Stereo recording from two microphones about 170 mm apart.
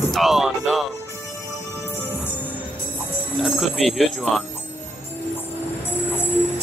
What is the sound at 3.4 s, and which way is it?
Speech, centre (ahead or behind).